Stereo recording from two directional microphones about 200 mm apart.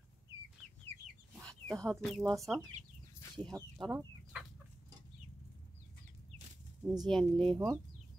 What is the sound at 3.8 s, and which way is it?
Chicken, 5° right (ahead or behind).